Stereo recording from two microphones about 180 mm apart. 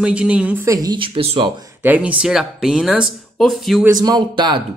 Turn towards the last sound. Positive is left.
turn(degrees=-25)  # may be behind; listen again after turning